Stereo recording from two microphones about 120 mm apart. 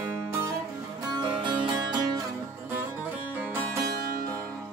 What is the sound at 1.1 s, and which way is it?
Music, 40° right (ahead or behind).